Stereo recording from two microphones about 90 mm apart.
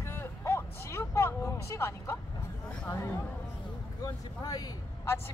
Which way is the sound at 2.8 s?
30° left (ahead or behind).